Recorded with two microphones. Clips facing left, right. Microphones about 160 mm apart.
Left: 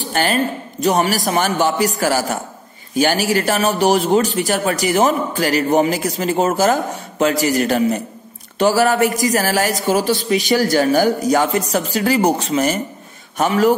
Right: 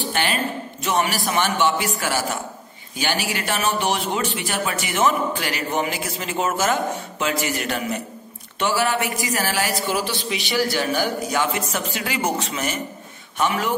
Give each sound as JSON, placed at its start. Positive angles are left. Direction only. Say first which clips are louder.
{"t": 0.0, "sound": "a man's voice", "louder": "left 5 dB", "side_deg": 40}